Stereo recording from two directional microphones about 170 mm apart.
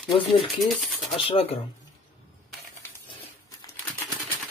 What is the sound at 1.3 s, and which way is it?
Speech, 35° left (ahead or behind).